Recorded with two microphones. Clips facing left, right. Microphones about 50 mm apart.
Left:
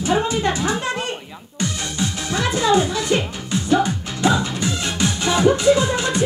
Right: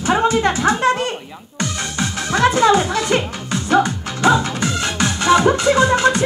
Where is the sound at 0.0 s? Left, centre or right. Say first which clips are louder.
Right 4 dB; right.